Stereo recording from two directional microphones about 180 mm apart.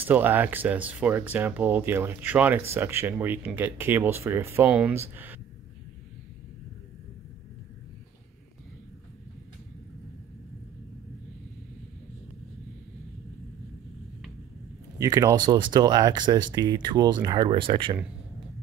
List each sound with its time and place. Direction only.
0.0 s speech: 10° right (ahead or behind)
15.0 s speech: 20° right (ahead or behind)